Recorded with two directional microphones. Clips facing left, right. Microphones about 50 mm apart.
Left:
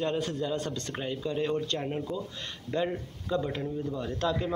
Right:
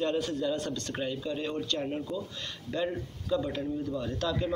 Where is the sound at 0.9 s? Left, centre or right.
Centre.